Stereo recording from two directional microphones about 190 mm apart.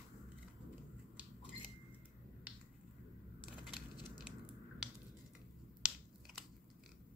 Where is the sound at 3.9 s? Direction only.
20° left (ahead or behind).